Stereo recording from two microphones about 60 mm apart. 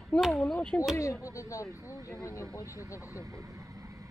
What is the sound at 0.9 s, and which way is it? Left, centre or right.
Speech, left.